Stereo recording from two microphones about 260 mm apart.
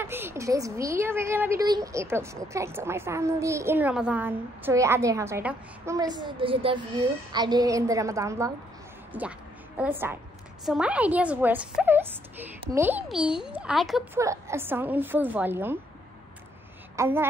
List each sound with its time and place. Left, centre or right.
0.0 s a woman's voice: centre
16.9 s a woman's voice: centre